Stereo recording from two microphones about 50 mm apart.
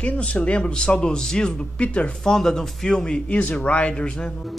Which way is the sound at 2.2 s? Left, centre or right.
Centre.